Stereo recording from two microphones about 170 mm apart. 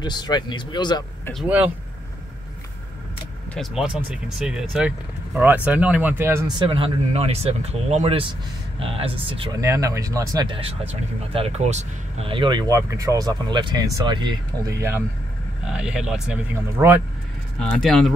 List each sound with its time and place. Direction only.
0.0 s speech: 25° left (ahead or behind)
1.3 s speech: 5° right (ahead or behind)
3.5 s speech: 5° right (ahead or behind)
6.5 s speech: 30° right (ahead or behind)
9.6 s speech: 20° right (ahead or behind)
10.5 s speech: 35° right (ahead or behind); by 17.0 s 15° right (ahead or behind)
17.6 s speech: 5° left (ahead or behind)